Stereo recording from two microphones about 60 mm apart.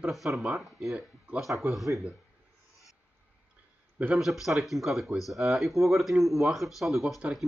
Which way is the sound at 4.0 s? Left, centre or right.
Right.